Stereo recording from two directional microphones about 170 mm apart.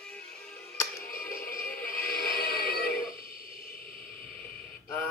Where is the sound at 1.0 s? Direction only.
55° left (ahead or behind).